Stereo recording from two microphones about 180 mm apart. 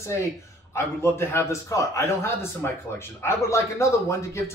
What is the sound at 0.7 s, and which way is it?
A man's voice, 15° left (ahead or behind).